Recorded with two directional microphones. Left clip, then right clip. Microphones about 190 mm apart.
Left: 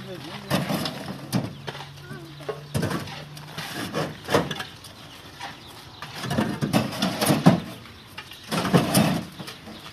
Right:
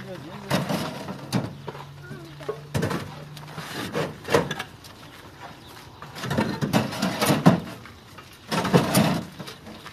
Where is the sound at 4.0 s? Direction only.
20° right (ahead or behind).